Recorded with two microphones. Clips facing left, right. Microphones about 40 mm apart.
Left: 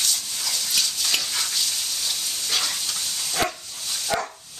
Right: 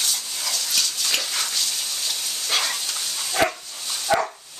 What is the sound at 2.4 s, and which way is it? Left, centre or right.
Dog, right.